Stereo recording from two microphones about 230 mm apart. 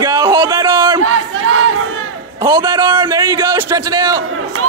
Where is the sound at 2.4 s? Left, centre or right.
Centre.